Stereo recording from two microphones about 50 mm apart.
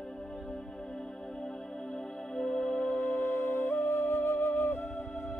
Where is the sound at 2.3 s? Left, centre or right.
Centre.